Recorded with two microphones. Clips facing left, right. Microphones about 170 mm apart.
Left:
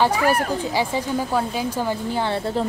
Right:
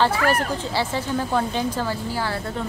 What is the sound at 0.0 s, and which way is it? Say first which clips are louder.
Speech: left 1 dB; 15° left (ahead or behind).